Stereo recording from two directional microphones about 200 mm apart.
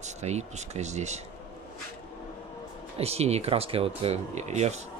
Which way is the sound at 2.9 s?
30° right (ahead or behind).